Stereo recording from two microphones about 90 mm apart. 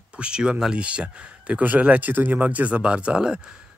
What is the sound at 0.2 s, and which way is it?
Speech, 10° right (ahead or behind).